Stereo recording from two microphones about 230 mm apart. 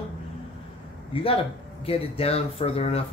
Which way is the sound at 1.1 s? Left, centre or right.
Left.